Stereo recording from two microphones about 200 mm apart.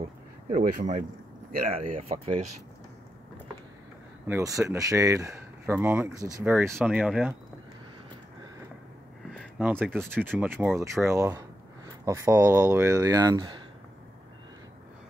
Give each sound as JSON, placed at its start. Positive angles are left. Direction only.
{"t": 0.5, "sound": "speech", "side_deg": -35}
{"t": 2.0, "sound": "speech", "side_deg": -30}
{"t": 4.3, "sound": "speech", "side_deg": -15}
{"t": 9.6, "sound": "speech", "side_deg": -10}